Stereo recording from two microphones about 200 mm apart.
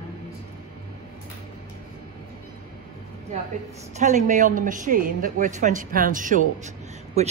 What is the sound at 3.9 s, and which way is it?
A man's voice, 35° right (ahead or behind).